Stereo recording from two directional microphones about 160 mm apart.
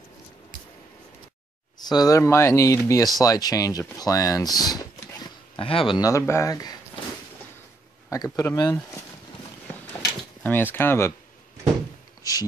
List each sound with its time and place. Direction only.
1.8 s speech: 25° left (ahead or behind)
5.6 s speech: 35° left (ahead or behind)
5.9 s speech: 20° left (ahead or behind)
8.1 s speech: 20° left (ahead or behind)
10.4 s speech: 15° left (ahead or behind)